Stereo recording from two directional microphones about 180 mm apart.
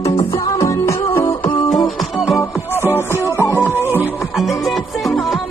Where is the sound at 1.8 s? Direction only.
Centre (ahead or behind).